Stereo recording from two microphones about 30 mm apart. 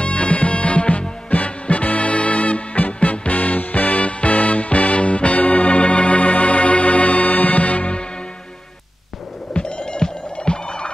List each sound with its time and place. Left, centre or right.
0.0 s music: left
9.5 s music: left